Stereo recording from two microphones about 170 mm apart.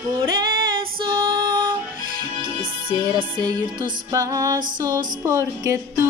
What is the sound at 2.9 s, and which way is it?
Music, 25° right (ahead or behind).